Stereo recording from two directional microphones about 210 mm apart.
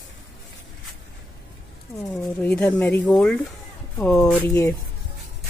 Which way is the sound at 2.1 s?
5° left (ahead or behind).